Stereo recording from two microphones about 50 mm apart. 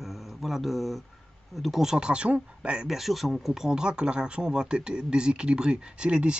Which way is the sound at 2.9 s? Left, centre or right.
Centre.